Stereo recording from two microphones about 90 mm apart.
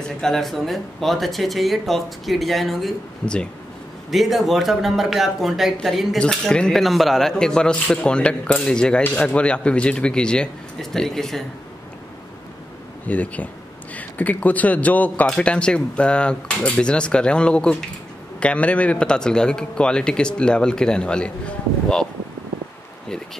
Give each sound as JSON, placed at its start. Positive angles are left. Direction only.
{"t": 0.2, "sound": "a man's voice", "side_deg": 5}
{"t": 4.1, "sound": "a man's voice", "side_deg": 0}
{"t": 13.0, "sound": "a man's voice", "side_deg": 15}